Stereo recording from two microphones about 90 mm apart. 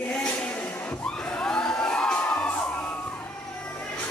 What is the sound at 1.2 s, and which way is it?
Crowd, 10° left (ahead or behind).